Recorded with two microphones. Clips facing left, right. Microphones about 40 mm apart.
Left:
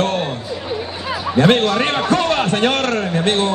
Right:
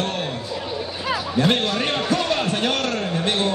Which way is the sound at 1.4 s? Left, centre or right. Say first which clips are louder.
Left 7 dB; left.